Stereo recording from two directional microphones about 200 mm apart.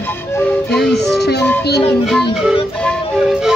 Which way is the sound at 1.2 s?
55° left (ahead or behind).